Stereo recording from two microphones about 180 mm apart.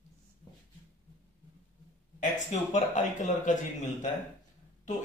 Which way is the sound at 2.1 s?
40° left (ahead or behind).